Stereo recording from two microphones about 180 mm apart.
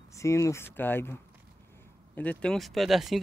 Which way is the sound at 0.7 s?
10° left (ahead or behind).